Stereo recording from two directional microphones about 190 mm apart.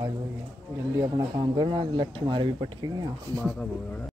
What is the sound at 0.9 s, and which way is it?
Speech, 20° right (ahead or behind).